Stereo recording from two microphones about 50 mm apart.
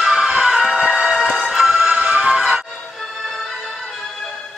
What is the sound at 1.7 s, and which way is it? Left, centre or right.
Music, right.